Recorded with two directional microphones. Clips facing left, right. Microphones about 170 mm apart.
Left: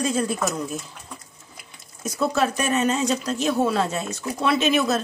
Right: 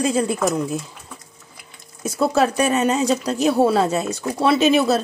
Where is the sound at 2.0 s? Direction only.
30° right (ahead or behind).